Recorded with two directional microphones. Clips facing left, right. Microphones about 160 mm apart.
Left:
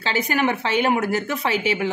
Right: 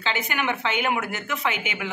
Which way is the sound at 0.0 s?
35° left (ahead or behind).